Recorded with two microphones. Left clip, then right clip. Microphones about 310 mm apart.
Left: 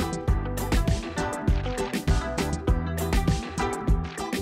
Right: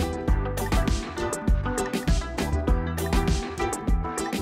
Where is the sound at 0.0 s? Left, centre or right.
Centre.